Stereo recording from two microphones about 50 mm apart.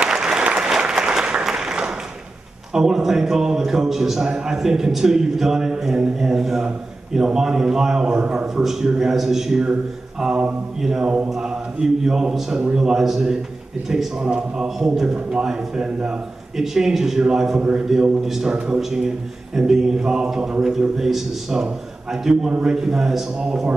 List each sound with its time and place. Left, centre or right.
0.0 s applause: centre
2.7 s a man's voice: centre
8.6 s speech: centre
10.8 s speech: centre